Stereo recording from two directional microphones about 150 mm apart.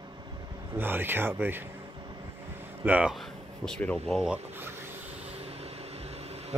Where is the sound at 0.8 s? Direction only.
15° right (ahead or behind).